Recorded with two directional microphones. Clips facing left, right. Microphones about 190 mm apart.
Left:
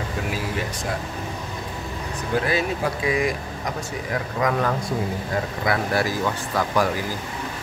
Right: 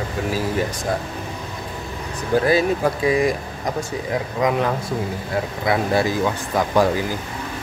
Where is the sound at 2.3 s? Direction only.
35° right (ahead or behind).